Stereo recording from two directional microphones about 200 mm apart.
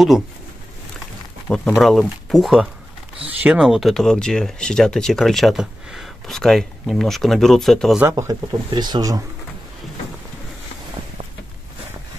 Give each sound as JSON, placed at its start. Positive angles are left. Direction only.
{"t": 1.8, "sound": "speech", "side_deg": 0}
{"t": 8.0, "sound": "speech", "side_deg": -15}